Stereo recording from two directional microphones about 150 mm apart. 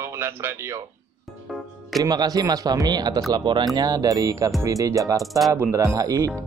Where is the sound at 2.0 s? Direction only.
25° right (ahead or behind).